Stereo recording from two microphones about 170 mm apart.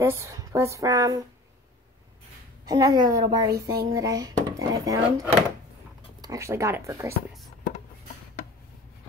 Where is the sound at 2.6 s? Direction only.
20° right (ahead or behind).